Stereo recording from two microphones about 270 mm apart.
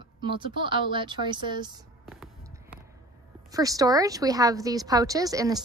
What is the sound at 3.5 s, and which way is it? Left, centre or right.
A woman's voice, centre.